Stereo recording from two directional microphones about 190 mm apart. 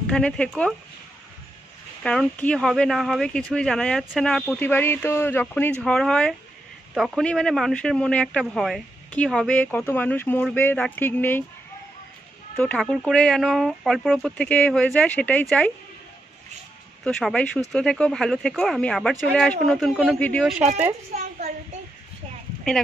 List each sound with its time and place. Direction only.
0.1 s speech: 5° left (ahead or behind)
2.0 s speech: 5° left (ahead or behind)
12.5 s speech: 5° left (ahead or behind)
17.0 s speech: 5° left (ahead or behind)
21.1 s a woman's voice: 40° right (ahead or behind)